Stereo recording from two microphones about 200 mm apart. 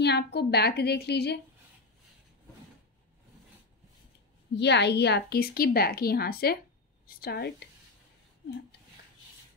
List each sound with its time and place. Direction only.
0.0 s a woman's voice: 55° left (ahead or behind)
4.6 s a woman's voice: 60° left (ahead or behind)